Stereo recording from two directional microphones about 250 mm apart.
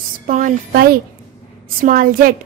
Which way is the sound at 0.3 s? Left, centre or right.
Right.